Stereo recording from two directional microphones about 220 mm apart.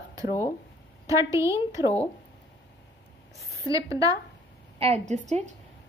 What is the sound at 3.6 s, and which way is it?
Speech, 15° right (ahead or behind).